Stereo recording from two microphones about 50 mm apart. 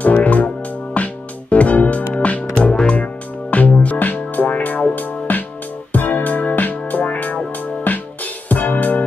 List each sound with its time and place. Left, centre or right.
0.0 s music: left